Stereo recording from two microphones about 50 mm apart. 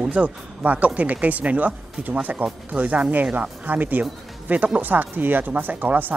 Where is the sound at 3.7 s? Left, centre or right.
Right.